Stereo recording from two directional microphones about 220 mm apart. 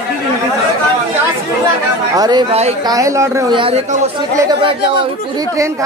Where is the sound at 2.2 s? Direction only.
20° right (ahead or behind).